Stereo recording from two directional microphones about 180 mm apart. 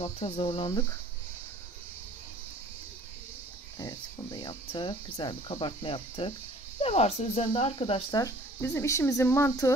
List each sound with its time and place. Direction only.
0.0 s speech: 35° left (ahead or behind)
3.7 s speech: 25° left (ahead or behind)
8.2 s speech: 15° left (ahead or behind)